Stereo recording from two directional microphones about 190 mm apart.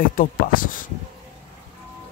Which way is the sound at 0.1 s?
45° left (ahead or behind).